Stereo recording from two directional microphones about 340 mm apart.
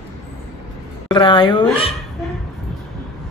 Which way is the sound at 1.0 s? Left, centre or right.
Centre.